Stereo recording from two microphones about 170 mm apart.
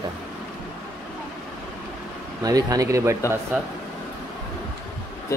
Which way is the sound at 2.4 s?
20° right (ahead or behind).